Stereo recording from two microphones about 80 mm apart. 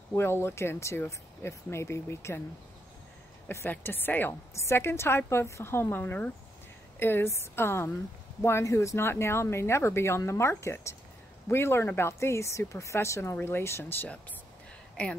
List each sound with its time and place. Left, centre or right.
0.1 s speech: left
3.7 s a woman's voice: left
15.0 s speech: centre